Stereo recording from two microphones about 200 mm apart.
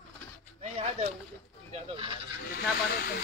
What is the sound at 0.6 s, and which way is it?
Speech, 35° right (ahead or behind).